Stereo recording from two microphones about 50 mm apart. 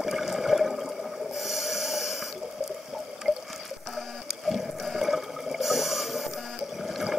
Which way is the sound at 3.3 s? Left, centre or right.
Centre.